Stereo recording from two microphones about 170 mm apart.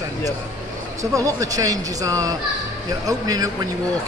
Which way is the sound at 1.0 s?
20° right (ahead or behind).